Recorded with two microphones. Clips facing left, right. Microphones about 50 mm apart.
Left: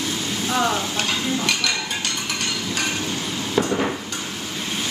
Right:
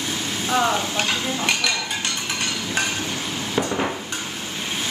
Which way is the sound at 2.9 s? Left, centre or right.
Right.